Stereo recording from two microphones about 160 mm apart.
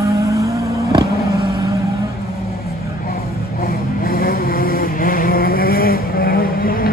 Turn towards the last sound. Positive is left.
turn(degrees=65)  # may be behind; listen again after turning